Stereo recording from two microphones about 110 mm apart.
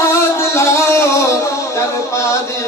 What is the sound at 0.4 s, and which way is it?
Music, 25° left (ahead or behind).